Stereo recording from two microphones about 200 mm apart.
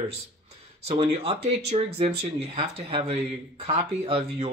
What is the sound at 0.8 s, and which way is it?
Speech, 30° right (ahead or behind).